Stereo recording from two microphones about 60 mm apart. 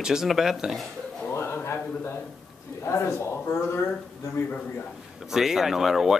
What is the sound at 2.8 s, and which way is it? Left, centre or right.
Speech, left.